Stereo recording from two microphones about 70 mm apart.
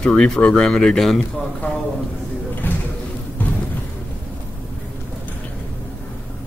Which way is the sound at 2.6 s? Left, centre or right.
Left.